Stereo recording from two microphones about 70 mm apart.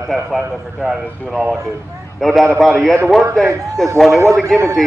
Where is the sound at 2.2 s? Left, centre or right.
Centre.